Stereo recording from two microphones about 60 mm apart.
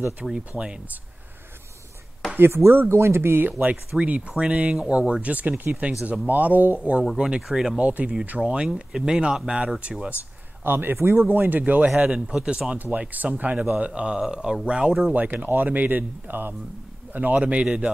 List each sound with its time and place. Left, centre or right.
0.2 s speech: centre
2.3 s speech: right
3.4 s speech: right; by 7.8 s centre
7.8 s speech: right
10.6 s speech: right
11.2 s speech: right
11.9 s speech: centre
15.1 s speech: right